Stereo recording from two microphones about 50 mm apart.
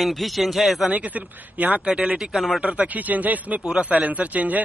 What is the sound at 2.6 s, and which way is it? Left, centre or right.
A man's voice, right.